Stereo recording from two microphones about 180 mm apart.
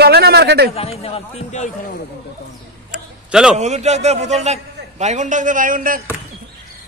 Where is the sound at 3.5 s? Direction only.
40° right (ahead or behind).